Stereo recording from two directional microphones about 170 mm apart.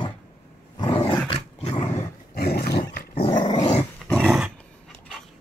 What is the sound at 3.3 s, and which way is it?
Dog, 25° left (ahead or behind).